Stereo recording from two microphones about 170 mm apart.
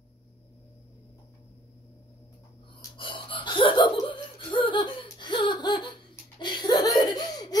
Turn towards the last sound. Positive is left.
turn(degrees=25)  # may be behind; listen again after turning